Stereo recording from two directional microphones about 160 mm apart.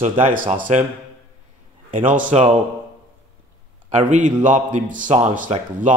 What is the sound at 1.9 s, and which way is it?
Speech, 55° right (ahead or behind).